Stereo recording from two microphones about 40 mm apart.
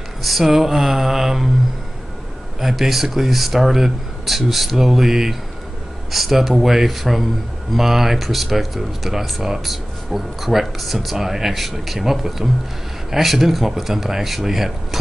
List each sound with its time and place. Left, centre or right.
0.2 s speech: centre
2.6 s speech: centre